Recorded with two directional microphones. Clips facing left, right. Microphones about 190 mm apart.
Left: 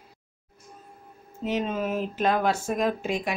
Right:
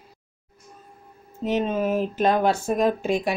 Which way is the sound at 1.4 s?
30° right (ahead or behind).